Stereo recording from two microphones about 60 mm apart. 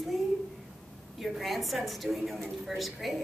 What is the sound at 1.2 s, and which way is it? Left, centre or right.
A woman's voice, centre.